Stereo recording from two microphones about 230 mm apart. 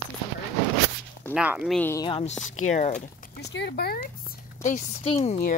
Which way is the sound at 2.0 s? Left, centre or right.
Left.